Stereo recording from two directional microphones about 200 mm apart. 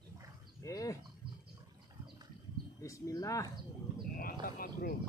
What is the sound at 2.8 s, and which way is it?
Speech, 15° left (ahead or behind).